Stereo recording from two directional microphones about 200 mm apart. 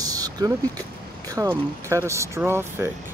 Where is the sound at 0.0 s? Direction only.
20° right (ahead or behind).